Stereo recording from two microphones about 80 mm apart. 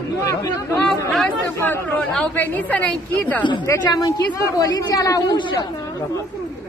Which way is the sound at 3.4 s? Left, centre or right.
Left.